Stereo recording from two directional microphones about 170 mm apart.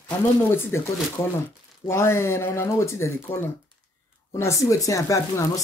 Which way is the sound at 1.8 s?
15° left (ahead or behind).